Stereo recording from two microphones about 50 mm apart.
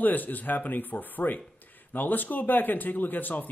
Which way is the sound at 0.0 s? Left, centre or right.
Left.